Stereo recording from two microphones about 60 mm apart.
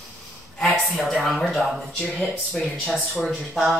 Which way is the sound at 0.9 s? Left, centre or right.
Centre.